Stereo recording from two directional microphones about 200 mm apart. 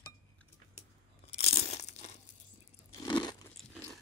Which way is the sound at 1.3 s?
35° left (ahead or behind).